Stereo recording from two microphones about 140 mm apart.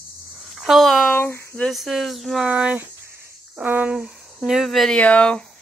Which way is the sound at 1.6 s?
Centre (ahead or behind).